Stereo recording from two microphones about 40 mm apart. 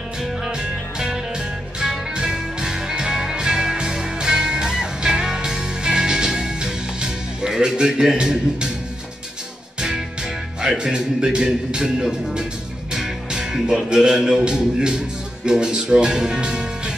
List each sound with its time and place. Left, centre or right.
0.2 s music: centre
9.8 s speech: centre
12.9 s music: centre
13.8 s speech: centre